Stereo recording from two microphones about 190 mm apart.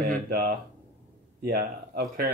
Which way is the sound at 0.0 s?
50° right (ahead or behind).